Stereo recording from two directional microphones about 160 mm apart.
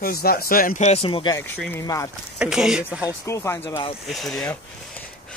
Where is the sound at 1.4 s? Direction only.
15° left (ahead or behind).